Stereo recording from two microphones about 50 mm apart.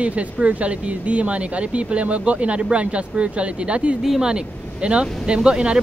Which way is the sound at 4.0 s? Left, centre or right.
Centre.